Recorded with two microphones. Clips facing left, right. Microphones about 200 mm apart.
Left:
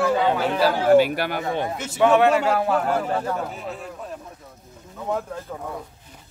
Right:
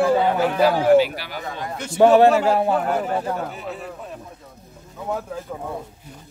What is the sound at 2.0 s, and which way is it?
Speech, 35° right (ahead or behind).